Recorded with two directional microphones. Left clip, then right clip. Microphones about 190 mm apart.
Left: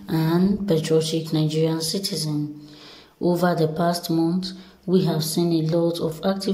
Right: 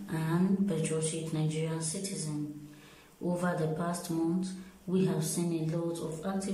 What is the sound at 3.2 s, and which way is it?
Speech, 25° left (ahead or behind).